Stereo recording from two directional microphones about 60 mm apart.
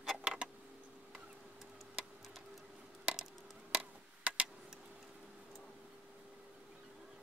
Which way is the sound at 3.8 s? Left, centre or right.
Right.